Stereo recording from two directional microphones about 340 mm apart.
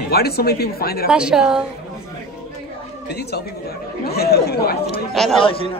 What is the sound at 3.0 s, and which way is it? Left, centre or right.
Speech, left.